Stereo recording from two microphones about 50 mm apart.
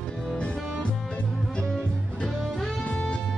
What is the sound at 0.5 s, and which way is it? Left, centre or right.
Music, centre.